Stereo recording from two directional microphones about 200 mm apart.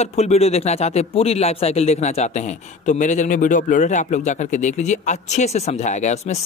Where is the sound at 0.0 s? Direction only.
30° left (ahead or behind).